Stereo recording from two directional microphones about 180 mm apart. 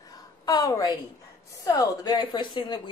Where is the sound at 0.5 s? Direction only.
20° left (ahead or behind).